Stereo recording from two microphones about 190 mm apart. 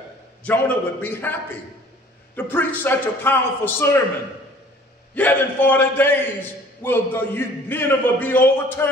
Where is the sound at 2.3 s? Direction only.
10° left (ahead or behind).